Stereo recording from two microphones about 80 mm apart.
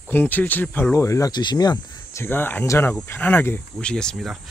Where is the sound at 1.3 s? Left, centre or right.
Left.